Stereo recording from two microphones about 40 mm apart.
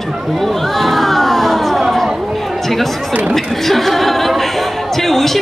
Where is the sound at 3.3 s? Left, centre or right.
Centre.